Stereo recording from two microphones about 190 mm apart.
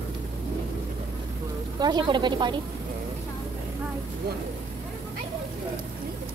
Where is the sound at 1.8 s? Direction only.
25° right (ahead or behind).